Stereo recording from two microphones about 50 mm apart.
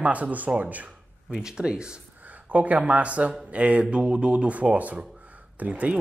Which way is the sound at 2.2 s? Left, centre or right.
Right.